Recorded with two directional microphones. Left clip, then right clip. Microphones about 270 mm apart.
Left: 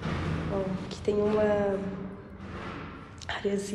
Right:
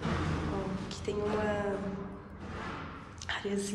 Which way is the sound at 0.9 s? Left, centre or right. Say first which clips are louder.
Left 7 dB; centre.